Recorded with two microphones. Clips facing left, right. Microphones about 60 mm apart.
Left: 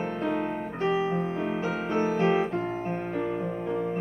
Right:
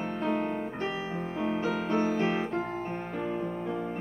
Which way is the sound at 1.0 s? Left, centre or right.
Centre.